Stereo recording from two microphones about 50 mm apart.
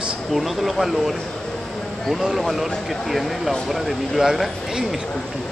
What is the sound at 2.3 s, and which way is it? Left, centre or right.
Speech, centre.